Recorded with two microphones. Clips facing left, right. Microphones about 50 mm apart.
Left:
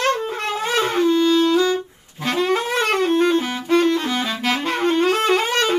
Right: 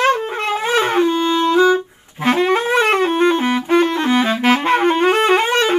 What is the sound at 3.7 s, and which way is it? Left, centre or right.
Music, right.